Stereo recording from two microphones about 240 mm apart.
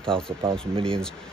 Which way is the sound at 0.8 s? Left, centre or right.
Centre.